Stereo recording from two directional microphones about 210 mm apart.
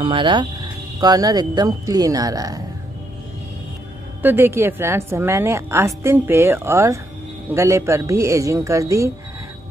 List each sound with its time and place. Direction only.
0.0 s a woman's voice: 25° right (ahead or behind)
4.2 s a woman's voice: 10° right (ahead or behind)